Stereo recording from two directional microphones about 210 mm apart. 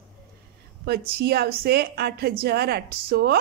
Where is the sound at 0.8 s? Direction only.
45° right (ahead or behind).